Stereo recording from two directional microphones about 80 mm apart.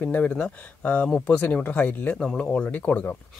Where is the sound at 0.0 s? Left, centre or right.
Centre.